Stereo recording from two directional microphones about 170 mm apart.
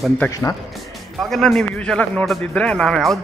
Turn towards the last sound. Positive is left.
turn(degrees=0)  # may be behind; listen again after turning